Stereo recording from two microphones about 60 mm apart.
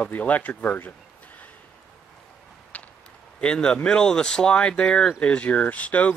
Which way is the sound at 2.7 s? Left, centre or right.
Left.